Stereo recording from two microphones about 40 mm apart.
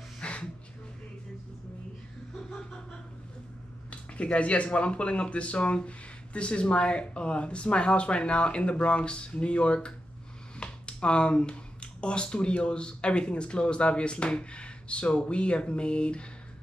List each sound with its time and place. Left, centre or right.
0.2 s gasp: left
3.9 s speech: left